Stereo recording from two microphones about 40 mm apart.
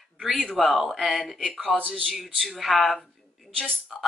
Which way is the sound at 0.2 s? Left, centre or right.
Centre.